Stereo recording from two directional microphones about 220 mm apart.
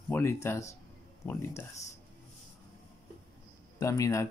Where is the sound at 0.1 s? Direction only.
10° left (ahead or behind).